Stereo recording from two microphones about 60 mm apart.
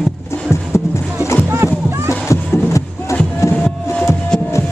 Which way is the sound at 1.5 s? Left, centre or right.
Right.